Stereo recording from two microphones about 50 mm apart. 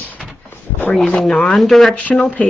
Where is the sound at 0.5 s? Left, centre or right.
Left.